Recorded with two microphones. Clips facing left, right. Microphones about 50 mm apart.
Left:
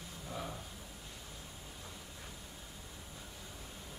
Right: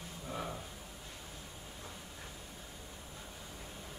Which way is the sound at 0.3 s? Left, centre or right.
Centre.